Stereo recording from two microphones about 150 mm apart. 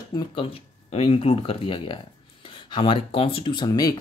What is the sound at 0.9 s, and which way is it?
A woman's voice, 40° left (ahead or behind).